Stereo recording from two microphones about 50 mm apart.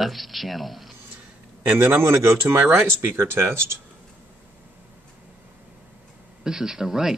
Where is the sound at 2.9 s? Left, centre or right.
Right.